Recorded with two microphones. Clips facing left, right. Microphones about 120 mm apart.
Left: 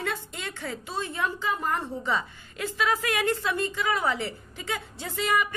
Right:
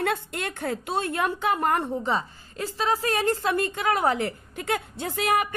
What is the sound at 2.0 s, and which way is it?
A woman's voice, 35° right (ahead or behind).